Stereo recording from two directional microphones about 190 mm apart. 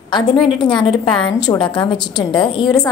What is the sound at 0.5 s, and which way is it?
A woman's voice, 25° left (ahead or behind).